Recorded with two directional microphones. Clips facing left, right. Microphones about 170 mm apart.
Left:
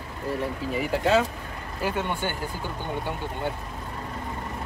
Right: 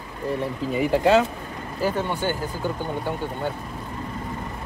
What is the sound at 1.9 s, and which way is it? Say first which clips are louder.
Speech: right 3 dB; 45° right (ahead or behind).